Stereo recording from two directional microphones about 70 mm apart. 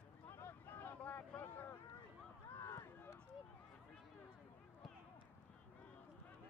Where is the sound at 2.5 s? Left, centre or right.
Left.